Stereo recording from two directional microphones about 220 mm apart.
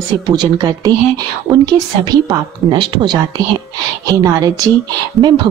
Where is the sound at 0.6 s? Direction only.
15° right (ahead or behind).